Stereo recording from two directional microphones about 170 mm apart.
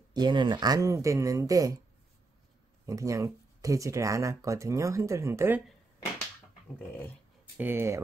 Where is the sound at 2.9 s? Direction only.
20° right (ahead or behind).